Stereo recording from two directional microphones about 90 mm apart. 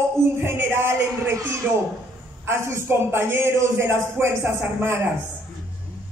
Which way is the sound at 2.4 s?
30° right (ahead or behind).